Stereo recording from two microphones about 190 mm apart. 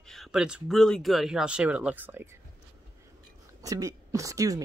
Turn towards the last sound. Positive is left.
turn(degrees=-20)  # may be behind; listen again after turning